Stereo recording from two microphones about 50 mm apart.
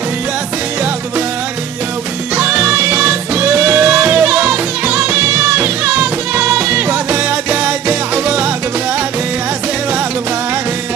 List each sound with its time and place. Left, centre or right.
2.3 s music: right
6.4 s music: right